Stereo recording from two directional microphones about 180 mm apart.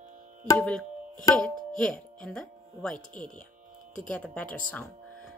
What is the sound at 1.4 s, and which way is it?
Speech, 5° left (ahead or behind).